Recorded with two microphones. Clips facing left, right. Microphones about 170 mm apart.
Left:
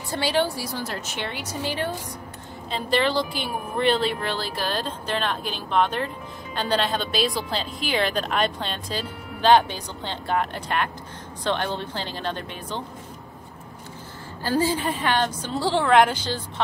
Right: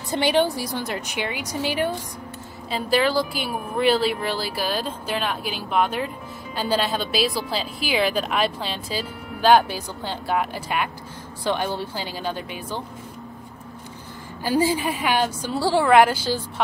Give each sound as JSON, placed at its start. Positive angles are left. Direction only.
{"t": 0.1, "sound": "a woman's voice", "side_deg": -20}
{"t": 14.4, "sound": "a woman's voice", "side_deg": -15}